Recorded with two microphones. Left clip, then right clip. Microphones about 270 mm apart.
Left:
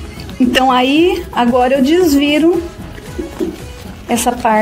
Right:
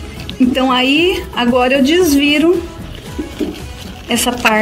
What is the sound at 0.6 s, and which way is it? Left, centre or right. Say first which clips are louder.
A woman's voice: left 3 dB; left.